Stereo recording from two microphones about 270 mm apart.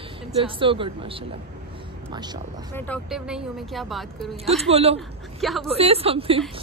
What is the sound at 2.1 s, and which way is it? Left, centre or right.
Speech, centre.